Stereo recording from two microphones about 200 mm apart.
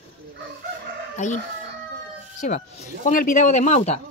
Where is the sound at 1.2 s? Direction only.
35° left (ahead or behind).